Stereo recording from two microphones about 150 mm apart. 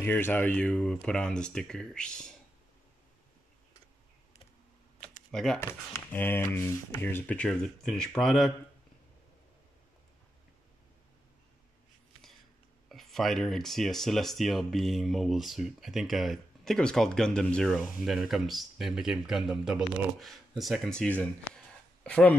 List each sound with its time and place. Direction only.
0.0 s speech: 10° left (ahead or behind)
5.3 s speech: 5° left (ahead or behind)
5.6 s speech: 15° left (ahead or behind)
12.9 s speech: centre (ahead or behind)